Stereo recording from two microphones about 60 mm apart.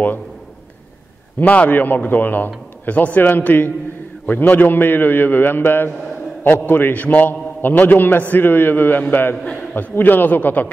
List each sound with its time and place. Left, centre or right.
1.4 s a man's voice: left